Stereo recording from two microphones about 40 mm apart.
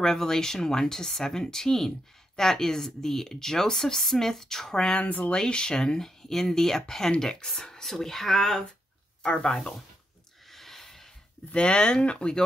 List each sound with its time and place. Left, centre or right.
0.0 s speech: centre
4.9 s speech: left
5.3 s speech: centre
9.2 s speech: left
10.5 s a sound: centre
11.5 s speech: left